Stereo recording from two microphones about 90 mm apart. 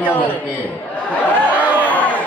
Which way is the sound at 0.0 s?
20° left (ahead or behind).